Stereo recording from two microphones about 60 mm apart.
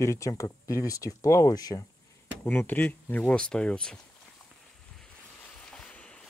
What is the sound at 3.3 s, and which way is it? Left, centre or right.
Speech, centre.